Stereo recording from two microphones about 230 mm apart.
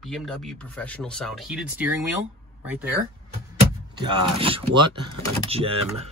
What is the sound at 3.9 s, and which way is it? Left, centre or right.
Speech, right.